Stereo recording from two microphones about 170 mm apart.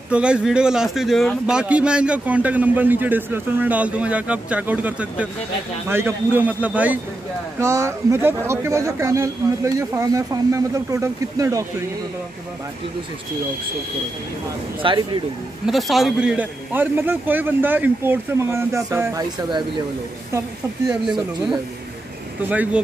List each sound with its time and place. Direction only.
0.1 s a man's voice: 5° right (ahead or behind)
14.8 s speech: 30° right (ahead or behind)
15.6 s a man's voice: centre (ahead or behind); by 19.6 s 20° right (ahead or behind)
20.9 s a man's voice: 5° right (ahead or behind)